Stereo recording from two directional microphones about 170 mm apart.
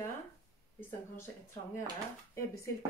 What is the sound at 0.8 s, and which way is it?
Speech, 10° left (ahead or behind).